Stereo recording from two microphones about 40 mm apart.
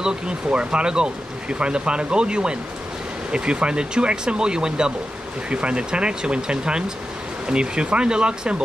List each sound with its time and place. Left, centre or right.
0.0 s speech: right